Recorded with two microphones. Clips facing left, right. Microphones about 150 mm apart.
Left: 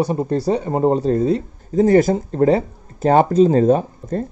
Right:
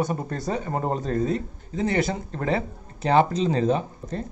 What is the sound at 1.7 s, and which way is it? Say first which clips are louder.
Speech: left 11 dB; 45° left (ahead or behind).